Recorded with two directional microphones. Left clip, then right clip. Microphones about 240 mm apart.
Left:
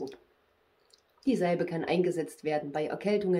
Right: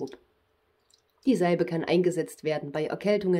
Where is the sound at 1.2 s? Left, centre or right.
Right.